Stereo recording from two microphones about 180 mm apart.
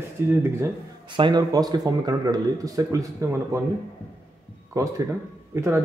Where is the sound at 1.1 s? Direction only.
25° right (ahead or behind).